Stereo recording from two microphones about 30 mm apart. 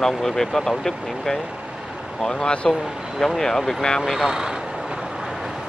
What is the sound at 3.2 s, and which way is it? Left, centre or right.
Speech, centre.